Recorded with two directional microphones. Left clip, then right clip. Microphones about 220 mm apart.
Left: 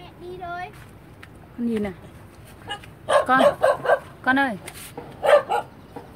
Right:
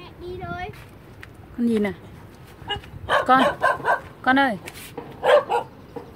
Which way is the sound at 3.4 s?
10° left (ahead or behind).